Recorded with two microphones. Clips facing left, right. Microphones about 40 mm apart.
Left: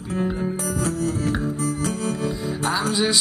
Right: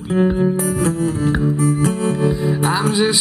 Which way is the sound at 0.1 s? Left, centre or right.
Right.